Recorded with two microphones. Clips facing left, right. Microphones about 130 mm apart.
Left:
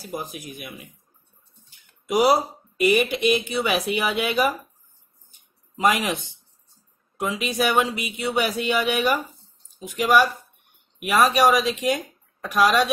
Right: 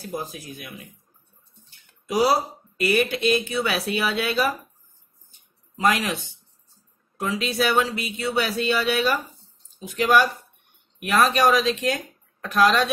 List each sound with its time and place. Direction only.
0.0 s speech: 10° left (ahead or behind)
2.0 s speech: 15° left (ahead or behind)
5.8 s speech: 15° left (ahead or behind)